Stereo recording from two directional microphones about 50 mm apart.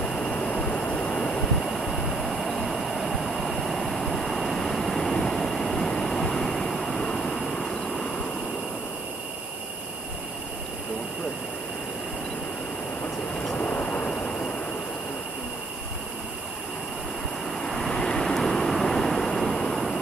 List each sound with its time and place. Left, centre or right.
0.0 s vehicle: centre
13.6 s vehicle: left
17.6 s vehicle: centre